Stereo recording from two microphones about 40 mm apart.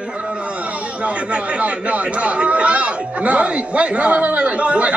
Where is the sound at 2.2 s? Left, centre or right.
Right.